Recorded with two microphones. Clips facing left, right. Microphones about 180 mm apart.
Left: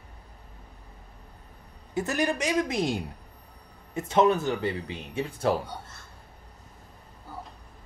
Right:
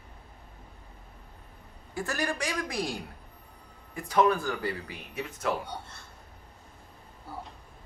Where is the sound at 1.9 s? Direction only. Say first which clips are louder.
Left 5 dB; 20° left (ahead or behind).